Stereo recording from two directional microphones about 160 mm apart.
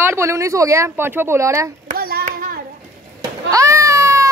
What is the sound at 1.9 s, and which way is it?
Hands, 70° right (ahead or behind).